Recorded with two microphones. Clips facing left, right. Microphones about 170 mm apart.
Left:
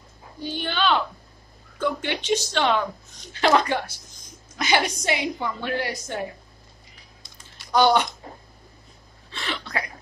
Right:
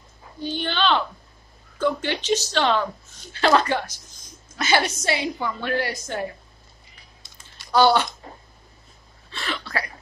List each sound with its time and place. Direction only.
0.4 s speech: 10° left (ahead or behind)
7.7 s speech: 15° left (ahead or behind)
9.3 s a sound: 20° left (ahead or behind)